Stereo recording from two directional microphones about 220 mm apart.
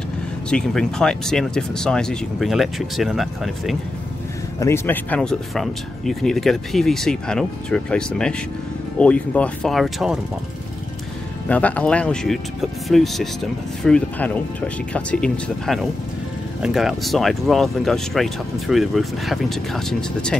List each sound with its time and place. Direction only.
0.5 s speech: 5° left (ahead or behind)
4.6 s speech: 10° left (ahead or behind)
11.4 s speech: 5° left (ahead or behind)